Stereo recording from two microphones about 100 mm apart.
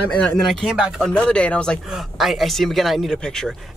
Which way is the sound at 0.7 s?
10° right (ahead or behind).